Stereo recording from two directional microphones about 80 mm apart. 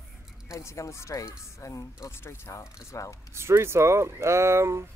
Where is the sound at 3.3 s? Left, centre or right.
Right.